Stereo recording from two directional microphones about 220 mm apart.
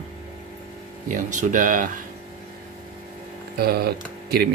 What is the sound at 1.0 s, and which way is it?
Speech, 35° right (ahead or behind).